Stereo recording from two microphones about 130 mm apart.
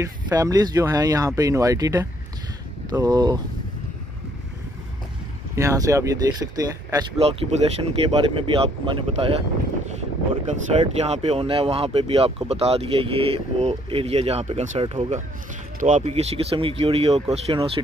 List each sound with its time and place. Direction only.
0.0 s speech: 25° right (ahead or behind)
5.6 s speech: 25° right (ahead or behind)
7.2 s speech: 50° right (ahead or behind)
10.7 s speech: 55° right (ahead or behind)